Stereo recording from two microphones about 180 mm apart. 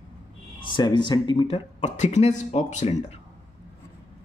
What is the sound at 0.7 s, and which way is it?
Speech, 25° left (ahead or behind).